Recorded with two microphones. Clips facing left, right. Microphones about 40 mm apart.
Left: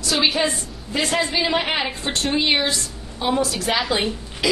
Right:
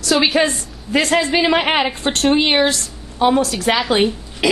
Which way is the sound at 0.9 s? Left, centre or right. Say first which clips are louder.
Right 6 dB; right.